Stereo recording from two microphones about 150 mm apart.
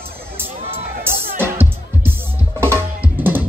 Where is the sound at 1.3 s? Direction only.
15° right (ahead or behind).